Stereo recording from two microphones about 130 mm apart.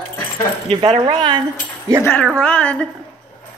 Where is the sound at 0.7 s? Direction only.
45° right (ahead or behind).